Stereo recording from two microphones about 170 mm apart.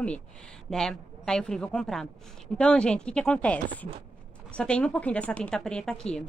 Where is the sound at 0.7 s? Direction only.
5° left (ahead or behind).